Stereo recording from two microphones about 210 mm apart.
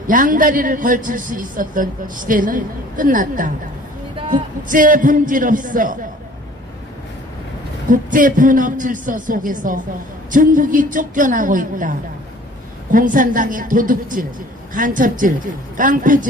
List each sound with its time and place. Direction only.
0.0 s a man's voice: 40° right (ahead or behind)
7.9 s a man's voice: 40° right (ahead or behind)
12.9 s a man's voice: 40° right (ahead or behind)